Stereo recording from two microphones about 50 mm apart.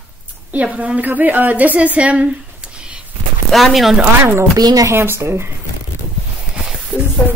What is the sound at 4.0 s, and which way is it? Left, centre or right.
Speech, right.